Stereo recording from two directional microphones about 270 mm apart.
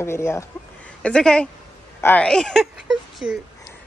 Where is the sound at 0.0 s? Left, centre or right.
Centre.